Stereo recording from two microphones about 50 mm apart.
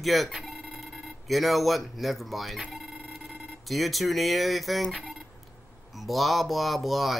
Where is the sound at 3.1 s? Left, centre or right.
Centre.